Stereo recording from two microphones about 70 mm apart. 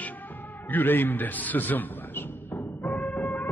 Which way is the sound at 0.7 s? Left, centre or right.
Left.